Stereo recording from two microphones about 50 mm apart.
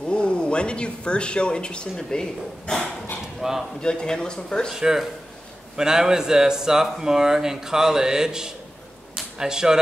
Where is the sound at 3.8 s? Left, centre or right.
Centre.